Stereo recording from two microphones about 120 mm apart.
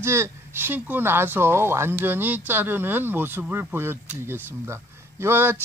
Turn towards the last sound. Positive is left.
turn(degrees=-20)  # may be behind; listen again after turning